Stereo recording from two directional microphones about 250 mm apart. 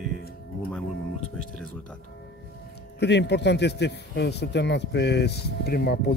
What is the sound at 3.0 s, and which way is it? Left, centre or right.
Speech, left.